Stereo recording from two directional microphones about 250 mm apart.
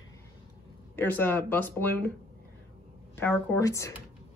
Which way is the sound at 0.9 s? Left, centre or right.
Centre.